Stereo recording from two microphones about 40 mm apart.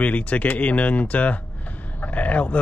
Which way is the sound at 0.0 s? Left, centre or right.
Left.